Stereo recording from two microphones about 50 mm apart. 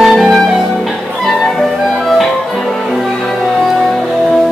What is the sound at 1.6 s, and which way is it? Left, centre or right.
Music, centre.